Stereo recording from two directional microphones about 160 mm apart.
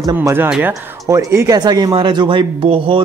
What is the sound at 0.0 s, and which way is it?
Speech, 20° right (ahead or behind).